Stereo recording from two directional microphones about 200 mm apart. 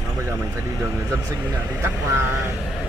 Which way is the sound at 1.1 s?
15° right (ahead or behind).